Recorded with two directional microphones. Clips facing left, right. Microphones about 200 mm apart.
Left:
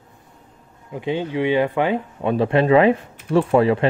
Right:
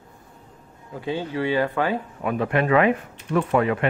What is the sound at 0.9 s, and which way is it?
Speech, 20° left (ahead or behind).